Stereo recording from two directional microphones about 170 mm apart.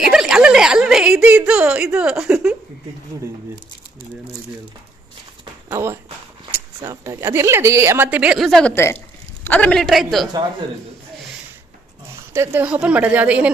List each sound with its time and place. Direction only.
0.0 s a woman's voice: 5° right (ahead or behind)
5.4 s a sound: 15° right (ahead or behind)
6.8 s a woman's voice: 15° right (ahead or behind); by 10.3 s centre (ahead or behind)
12.3 s a woman's voice: 15° right (ahead or behind)